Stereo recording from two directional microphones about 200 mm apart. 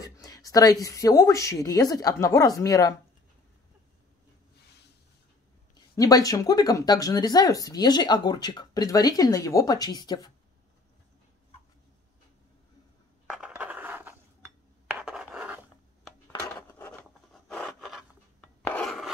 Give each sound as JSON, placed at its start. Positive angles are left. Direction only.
{"t": 0.0, "sound": "speech", "side_deg": 15}
{"t": 5.9, "sound": "speech", "side_deg": 15}
{"t": 13.3, "sound": "a sound", "side_deg": -5}
{"t": 14.9, "sound": "rub", "side_deg": -5}
{"t": 16.3, "sound": "a sound", "side_deg": 10}
{"t": 17.3, "sound": "rub", "side_deg": 0}
{"t": 18.6, "sound": "filing", "side_deg": 5}